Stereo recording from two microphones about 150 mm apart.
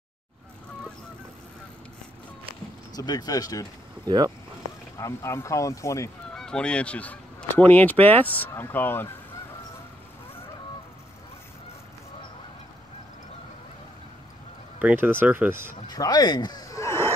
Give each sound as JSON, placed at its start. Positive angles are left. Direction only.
{"t": 3.0, "sound": "speech", "side_deg": 25}
{"t": 4.0, "sound": "speech", "side_deg": -25}
{"t": 4.9, "sound": "speech", "side_deg": 20}
{"t": 6.3, "sound": "speech", "side_deg": 5}
{"t": 14.8, "sound": "speech", "side_deg": -10}
{"t": 15.9, "sound": "speech", "side_deg": 25}